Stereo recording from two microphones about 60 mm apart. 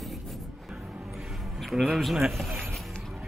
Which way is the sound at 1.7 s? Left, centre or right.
Centre.